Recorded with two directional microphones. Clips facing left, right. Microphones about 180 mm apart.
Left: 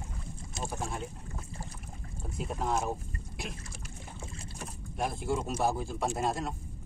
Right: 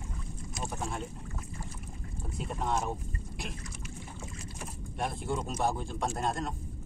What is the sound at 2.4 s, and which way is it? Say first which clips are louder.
Speech: left 1 dB; centre (ahead or behind).